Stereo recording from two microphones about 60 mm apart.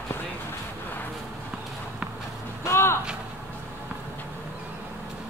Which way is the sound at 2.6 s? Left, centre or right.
Left.